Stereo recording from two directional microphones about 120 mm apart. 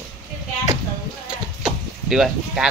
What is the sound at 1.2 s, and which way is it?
Sheep, 5° right (ahead or behind).